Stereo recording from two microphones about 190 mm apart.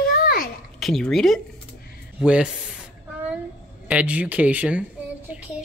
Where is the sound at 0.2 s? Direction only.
50° left (ahead or behind).